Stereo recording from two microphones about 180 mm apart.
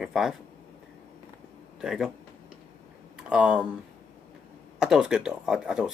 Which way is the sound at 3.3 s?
5° right (ahead or behind).